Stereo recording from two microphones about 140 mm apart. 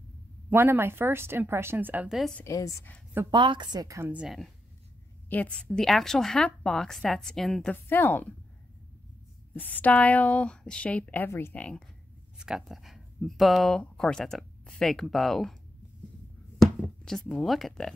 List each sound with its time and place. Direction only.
0.5 s a woman's voice: 15° right (ahead or behind)
2.1 s a woman's voice: 5° left (ahead or behind)
2.4 s a woman's voice: 25° left (ahead or behind)
3.3 s a woman's voice: 35° right (ahead or behind)
4.1 s a woman's voice: 5° right (ahead or behind)
5.3 s a woman's voice: 10° left (ahead or behind)
7.7 s speech: 15° left (ahead or behind)
9.5 s speech: 10° left (ahead or behind)
12.4 s speech: 5° right (ahead or behind)
16.5 s a sound: 5° left (ahead or behind)